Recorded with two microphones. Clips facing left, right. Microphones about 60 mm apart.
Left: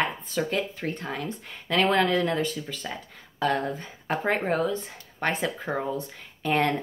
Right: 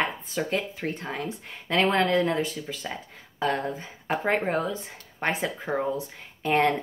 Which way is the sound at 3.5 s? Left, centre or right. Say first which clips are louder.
Left 2 dB; centre.